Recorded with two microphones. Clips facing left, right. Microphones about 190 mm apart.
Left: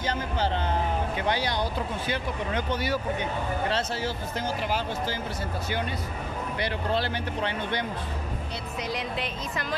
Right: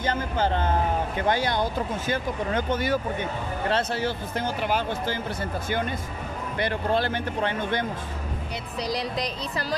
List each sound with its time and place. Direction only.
0.0 s vehicle: 50° right (ahead or behind)
1.2 s speech: 50° right (ahead or behind)
6.6 s speech: 50° right (ahead or behind)
8.8 s speech: 40° right (ahead or behind)